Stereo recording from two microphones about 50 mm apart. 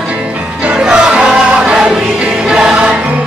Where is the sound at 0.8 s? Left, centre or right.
Centre.